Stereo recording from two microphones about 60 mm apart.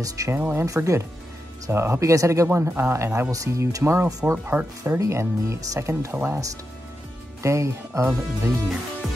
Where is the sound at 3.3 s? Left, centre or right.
Right.